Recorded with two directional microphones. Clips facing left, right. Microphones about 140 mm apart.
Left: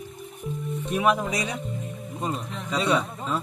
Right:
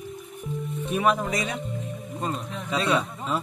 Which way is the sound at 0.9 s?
Centre (ahead or behind).